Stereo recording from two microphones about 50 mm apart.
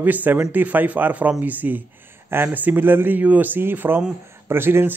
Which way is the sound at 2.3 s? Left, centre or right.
Right.